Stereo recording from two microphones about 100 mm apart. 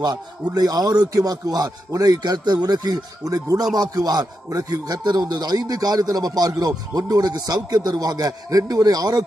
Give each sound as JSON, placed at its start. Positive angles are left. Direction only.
{"t": 0.0, "sound": "speech", "side_deg": -40}